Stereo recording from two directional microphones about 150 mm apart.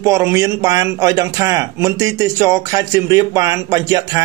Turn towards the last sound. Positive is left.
turn(degrees=-20)  # may be behind; listen again after turning